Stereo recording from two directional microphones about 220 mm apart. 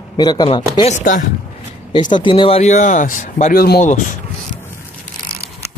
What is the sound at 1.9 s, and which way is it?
Speech, 20° left (ahead or behind).